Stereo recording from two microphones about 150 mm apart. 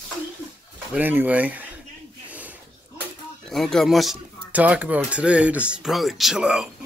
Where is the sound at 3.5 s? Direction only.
Centre (ahead or behind).